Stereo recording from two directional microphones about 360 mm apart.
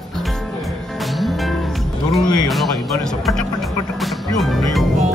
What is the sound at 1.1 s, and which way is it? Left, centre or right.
Music, centre.